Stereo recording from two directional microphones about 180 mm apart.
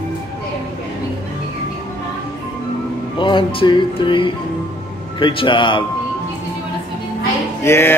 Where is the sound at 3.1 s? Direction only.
25° left (ahead or behind).